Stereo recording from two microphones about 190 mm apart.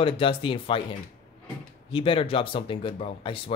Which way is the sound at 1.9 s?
30° left (ahead or behind).